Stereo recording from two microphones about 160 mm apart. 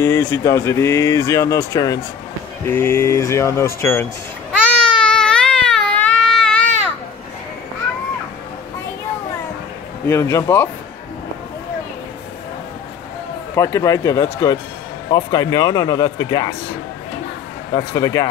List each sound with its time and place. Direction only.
0.0 s speech: 15° left (ahead or behind)
4.7 s baby cry: 5° left (ahead or behind)
10.0 s speech: 15° left (ahead or behind)
13.6 s a man's voice: 20° left (ahead or behind)
17.7 s a man's voice: 20° left (ahead or behind)